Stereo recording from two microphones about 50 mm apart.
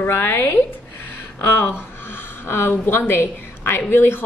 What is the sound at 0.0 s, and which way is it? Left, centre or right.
Speech, left.